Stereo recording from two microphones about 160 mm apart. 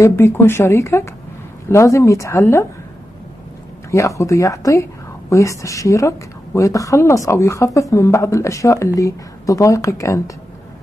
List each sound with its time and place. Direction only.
0.0 s speech: 15° left (ahead or behind)
3.9 s a woman's voice: 20° left (ahead or behind)